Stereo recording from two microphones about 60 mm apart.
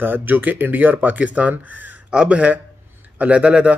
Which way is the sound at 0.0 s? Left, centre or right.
Right.